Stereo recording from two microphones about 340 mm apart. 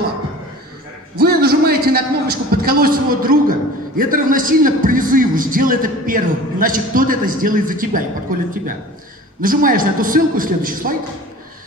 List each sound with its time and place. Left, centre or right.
1.2 s a man's voice: right